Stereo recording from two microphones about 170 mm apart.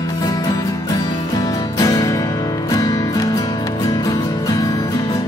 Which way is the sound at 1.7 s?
20° left (ahead or behind).